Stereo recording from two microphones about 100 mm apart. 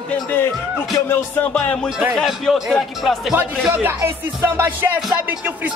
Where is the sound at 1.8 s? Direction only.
5° right (ahead or behind).